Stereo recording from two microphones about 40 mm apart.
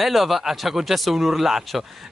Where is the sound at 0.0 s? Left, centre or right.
Centre.